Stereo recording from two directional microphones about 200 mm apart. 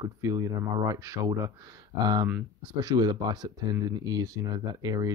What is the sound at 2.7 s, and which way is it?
Speech, 20° right (ahead or behind).